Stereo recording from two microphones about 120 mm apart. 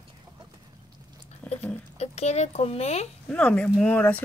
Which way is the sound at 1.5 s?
60° left (ahead or behind).